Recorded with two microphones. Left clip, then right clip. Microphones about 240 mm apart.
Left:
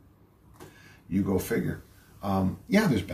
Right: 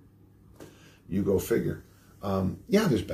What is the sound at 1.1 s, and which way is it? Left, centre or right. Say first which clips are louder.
Speech: right 2 dB; centre.